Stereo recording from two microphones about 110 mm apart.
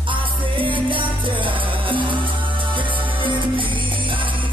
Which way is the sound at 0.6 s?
50° right (ahead or behind).